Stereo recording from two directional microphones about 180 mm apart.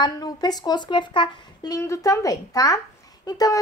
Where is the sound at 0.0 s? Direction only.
20° left (ahead or behind).